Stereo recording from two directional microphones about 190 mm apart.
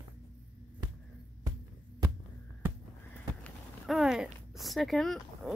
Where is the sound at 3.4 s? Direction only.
Centre (ahead or behind).